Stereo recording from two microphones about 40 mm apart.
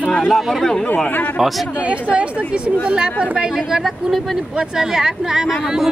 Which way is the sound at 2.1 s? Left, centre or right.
Right.